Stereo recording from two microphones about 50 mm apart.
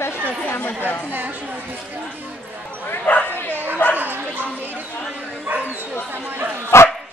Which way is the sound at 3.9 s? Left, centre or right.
Right.